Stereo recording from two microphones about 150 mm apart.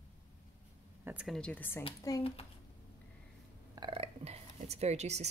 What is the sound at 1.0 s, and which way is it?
Speech, 5° right (ahead or behind).